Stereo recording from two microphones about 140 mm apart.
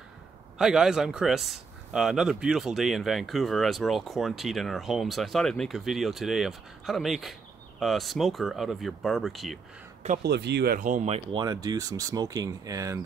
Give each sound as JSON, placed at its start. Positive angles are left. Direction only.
{"t": 0.6, "sound": "speech", "side_deg": -5}
{"t": 10.0, "sound": "speech", "side_deg": -85}
{"t": 11.3, "sound": "speech", "side_deg": -30}